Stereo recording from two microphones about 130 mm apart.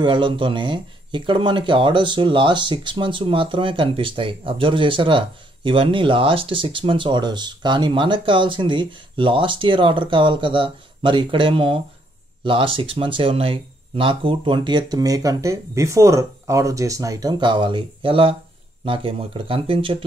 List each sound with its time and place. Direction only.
0.0 s speech: 40° right (ahead or behind)